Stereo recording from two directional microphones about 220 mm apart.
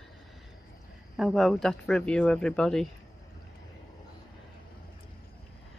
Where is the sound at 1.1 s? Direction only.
Centre (ahead or behind).